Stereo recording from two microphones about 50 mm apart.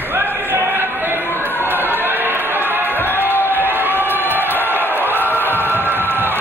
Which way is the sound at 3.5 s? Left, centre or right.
Right.